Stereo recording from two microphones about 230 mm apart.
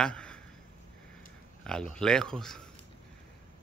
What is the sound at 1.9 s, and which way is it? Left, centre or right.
Speech, centre.